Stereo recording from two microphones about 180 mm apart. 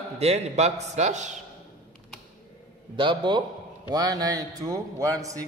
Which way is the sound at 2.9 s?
25° right (ahead or behind).